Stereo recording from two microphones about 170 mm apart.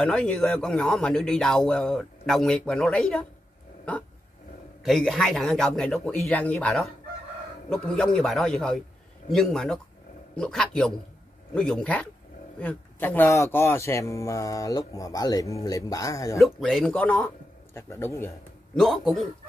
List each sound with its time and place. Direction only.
0.0 s speech: 5° left (ahead or behind)
4.8 s speech: centre (ahead or behind); by 16.3 s 20° left (ahead or behind)
16.3 s speech: centre (ahead or behind)
18.8 s speech: centre (ahead or behind)